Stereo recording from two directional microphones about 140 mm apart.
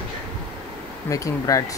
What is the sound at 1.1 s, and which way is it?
Speech, 25° left (ahead or behind).